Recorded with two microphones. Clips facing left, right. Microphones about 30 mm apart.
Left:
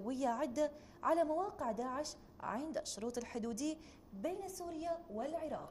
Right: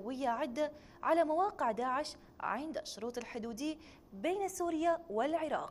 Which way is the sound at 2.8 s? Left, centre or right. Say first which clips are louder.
Right 1 dB; right.